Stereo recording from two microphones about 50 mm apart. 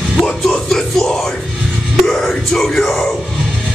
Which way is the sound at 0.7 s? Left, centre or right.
Centre.